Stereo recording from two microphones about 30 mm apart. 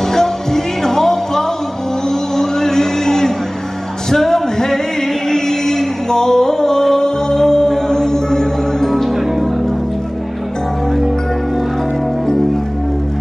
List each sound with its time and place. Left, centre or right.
0.1 s music: centre